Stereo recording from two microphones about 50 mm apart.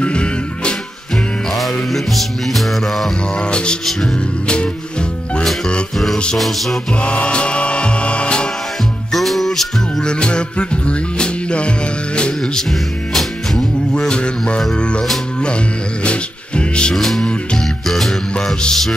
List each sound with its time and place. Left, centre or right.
0.0 s music: left
1.5 s music: centre
3.3 s music: centre
6.3 s music: centre
7.0 s music: left
9.1 s music: centre
10.0 s music: centre
16.9 s music: centre
18.6 s mantra: centre